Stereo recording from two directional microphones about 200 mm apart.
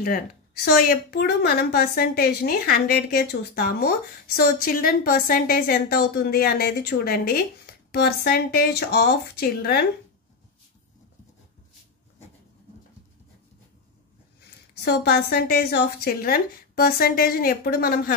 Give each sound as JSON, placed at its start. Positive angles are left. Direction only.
{"t": 0.0, "sound": "a woman's voice", "side_deg": 50}
{"t": 14.9, "sound": "a woman's voice", "side_deg": 50}